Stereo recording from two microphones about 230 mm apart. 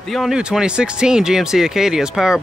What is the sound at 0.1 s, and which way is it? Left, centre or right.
Speech, centre.